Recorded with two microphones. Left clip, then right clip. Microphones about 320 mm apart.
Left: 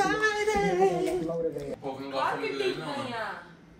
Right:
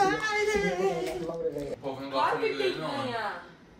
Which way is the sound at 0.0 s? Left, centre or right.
Left.